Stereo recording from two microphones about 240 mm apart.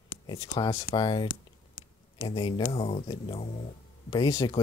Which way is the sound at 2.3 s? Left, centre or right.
Left.